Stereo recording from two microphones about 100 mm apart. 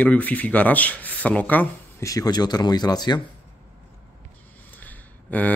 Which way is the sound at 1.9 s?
35° left (ahead or behind).